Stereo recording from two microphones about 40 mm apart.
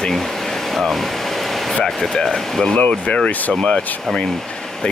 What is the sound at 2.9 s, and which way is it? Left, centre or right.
Speech, left.